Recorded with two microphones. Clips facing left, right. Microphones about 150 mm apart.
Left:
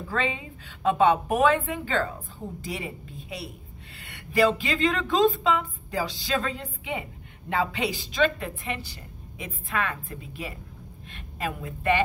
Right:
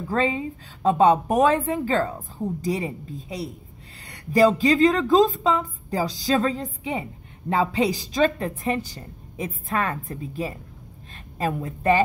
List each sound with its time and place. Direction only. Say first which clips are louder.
0.1 s a woman's voice: right 6 dB; 40° right (ahead or behind)